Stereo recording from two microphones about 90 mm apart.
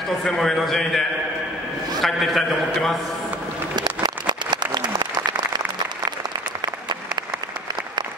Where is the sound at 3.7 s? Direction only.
55° right (ahead or behind).